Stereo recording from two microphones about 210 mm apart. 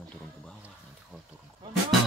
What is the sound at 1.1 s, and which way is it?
Speech, 10° right (ahead or behind).